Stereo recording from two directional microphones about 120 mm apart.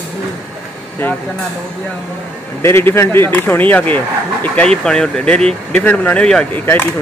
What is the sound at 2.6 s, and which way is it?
Speech, 20° left (ahead or behind).